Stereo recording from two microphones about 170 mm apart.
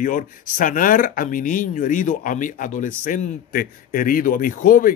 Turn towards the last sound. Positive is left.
turn(degrees=55)  # may be behind; listen again after turning